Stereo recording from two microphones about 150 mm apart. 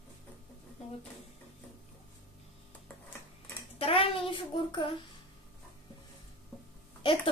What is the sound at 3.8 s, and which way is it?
Speech, 35° left (ahead or behind).